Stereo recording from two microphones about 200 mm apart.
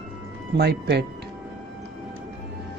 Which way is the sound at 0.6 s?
55° right (ahead or behind).